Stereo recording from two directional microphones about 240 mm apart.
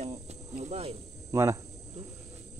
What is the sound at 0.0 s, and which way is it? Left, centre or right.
Cricket, right.